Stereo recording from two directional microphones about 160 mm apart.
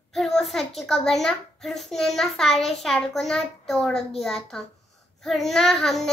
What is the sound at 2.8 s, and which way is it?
Child singing, centre (ahead or behind).